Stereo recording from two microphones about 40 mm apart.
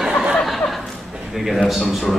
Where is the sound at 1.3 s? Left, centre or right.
Centre.